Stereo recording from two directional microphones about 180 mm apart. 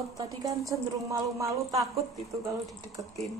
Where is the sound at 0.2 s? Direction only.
20° right (ahead or behind).